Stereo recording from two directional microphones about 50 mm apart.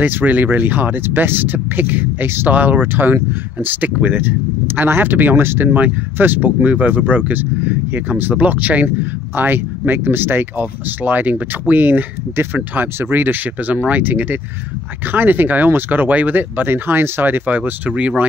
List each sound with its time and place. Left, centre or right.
0.0 s speech: right
2.5 s speech: right